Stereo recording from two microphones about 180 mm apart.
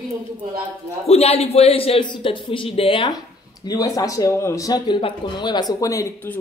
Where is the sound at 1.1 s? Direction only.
35° left (ahead or behind).